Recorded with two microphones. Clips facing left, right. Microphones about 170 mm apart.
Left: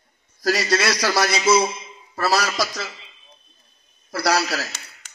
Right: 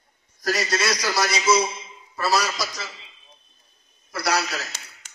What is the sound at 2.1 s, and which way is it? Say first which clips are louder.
Speech: left 2 dB; 60° left (ahead or behind).